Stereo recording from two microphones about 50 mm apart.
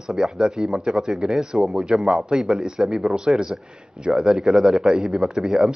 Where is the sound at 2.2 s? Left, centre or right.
Centre.